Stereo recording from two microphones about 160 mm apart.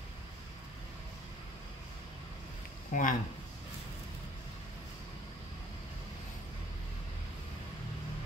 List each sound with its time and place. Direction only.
2.9 s speech: 60° left (ahead or behind)